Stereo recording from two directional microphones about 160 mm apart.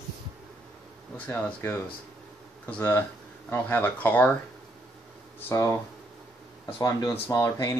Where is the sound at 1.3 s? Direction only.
15° left (ahead or behind).